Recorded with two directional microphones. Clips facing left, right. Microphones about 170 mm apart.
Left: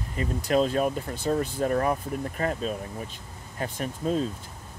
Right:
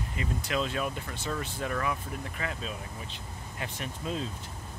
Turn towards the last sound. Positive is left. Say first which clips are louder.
# left 8 dB
turn(degrees=40)  # may be behind; listen again after turning